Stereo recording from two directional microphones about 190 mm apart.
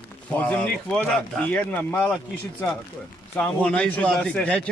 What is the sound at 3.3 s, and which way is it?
Speech, 5° left (ahead or behind).